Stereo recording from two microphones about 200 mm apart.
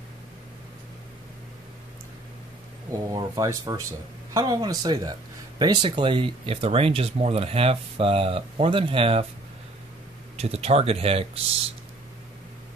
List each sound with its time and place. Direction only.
2.9 s speech: 15° right (ahead or behind)
10.3 s speech: 30° right (ahead or behind)